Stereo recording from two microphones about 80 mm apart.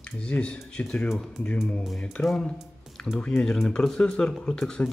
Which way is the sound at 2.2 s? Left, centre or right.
Left.